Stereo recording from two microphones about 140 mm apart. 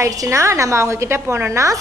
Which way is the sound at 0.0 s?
20° right (ahead or behind).